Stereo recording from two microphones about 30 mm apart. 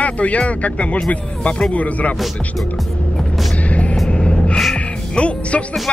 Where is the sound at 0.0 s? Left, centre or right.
Left.